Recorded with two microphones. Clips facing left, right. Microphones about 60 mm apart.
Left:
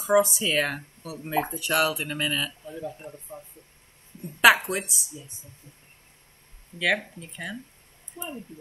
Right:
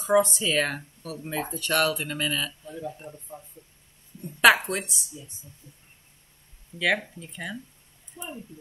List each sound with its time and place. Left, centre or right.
0.0 s speech: centre
6.8 s speech: centre
8.2 s speech: left